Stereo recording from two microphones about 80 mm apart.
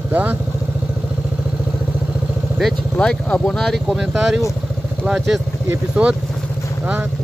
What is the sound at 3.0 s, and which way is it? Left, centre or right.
Speech, centre.